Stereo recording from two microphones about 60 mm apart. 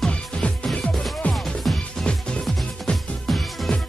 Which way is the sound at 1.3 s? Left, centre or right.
Centre.